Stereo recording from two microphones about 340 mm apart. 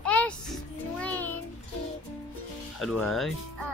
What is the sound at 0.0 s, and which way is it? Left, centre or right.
Music, centre.